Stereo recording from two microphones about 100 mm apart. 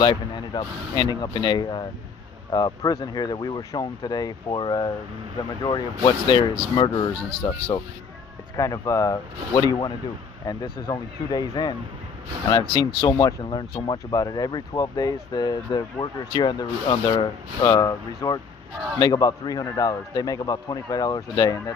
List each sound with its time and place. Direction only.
0.0 s speech: 50° left (ahead or behind)
8.5 s a man's voice: 30° left (ahead or behind)